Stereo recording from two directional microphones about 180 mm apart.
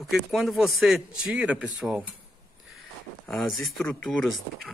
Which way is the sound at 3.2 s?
Centre (ahead or behind).